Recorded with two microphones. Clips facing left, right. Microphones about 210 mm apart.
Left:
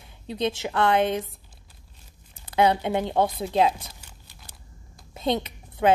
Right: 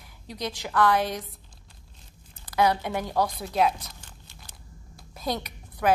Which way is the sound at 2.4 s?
25° left (ahead or behind).